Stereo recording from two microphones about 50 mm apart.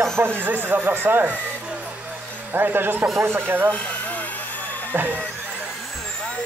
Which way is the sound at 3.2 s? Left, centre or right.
Right.